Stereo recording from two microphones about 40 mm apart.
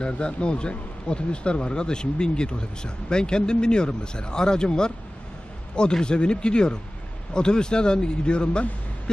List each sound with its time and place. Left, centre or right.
0.0 s speech: left